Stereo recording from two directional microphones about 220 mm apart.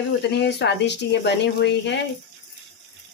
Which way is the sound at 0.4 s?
50° left (ahead or behind).